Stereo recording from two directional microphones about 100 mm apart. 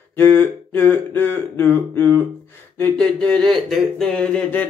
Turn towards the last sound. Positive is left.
turn(degrees=15)  # may be behind; listen again after turning